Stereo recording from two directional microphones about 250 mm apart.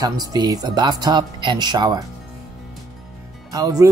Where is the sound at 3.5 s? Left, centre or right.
Centre.